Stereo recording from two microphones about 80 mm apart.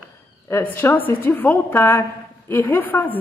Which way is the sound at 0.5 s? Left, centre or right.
Left.